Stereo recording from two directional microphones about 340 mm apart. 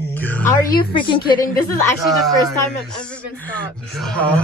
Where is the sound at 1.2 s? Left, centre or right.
Left.